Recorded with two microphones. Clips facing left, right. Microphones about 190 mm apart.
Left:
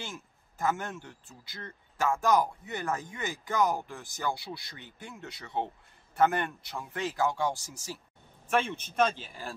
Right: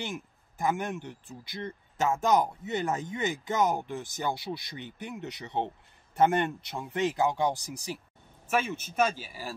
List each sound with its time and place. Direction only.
0.0 s speech: 15° right (ahead or behind)